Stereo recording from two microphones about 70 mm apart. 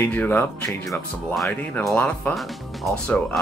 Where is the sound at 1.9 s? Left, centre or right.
Left.